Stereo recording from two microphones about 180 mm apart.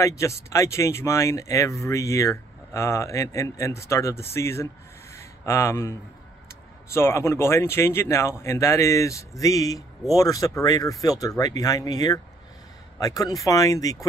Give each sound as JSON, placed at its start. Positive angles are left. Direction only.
{"t": 0.0, "sound": "speech", "side_deg": 15}
{"t": 5.1, "sound": "a sound", "side_deg": 15}
{"t": 6.9, "sound": "speech", "side_deg": 15}